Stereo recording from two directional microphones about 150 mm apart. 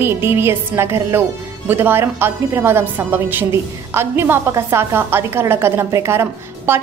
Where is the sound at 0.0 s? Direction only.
15° right (ahead or behind).